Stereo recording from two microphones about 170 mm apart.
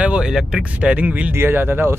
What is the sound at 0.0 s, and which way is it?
Speech, 5° right (ahead or behind).